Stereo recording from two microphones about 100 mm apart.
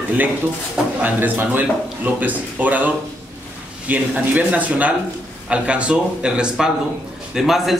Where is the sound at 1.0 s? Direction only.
20° right (ahead or behind).